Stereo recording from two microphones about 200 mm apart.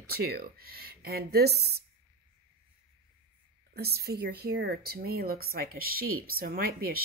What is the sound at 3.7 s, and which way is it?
A woman's voice, 50° right (ahead or behind).